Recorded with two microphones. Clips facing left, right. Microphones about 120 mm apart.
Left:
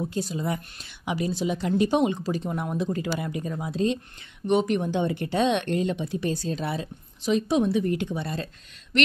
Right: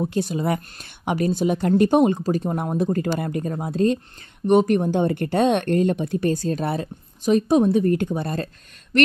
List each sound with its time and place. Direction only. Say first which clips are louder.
0.0 s speech: right 5 dB; 65° right (ahead or behind); by 8.5 s 45° right (ahead or behind)